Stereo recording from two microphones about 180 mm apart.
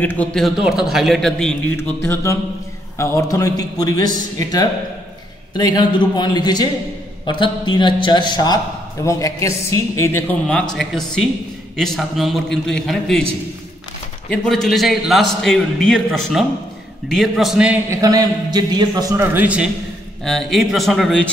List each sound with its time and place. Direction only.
0.0 s a man's voice: 10° left (ahead or behind)
10.4 s a man's voice: 5° left (ahead or behind)
14.3 s a man's voice: 5° left (ahead or behind)
17.8 s a man's voice: 20° right (ahead or behind); by 21.3 s centre (ahead or behind)